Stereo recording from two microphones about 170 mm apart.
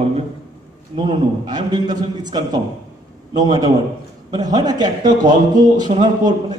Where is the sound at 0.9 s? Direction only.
25° right (ahead or behind).